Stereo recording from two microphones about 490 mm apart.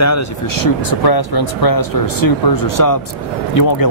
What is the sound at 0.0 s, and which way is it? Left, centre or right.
Speech, left.